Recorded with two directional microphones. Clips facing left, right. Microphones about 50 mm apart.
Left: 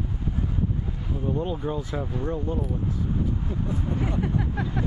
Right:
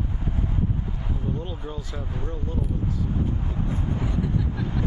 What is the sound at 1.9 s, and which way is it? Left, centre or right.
Speech, left.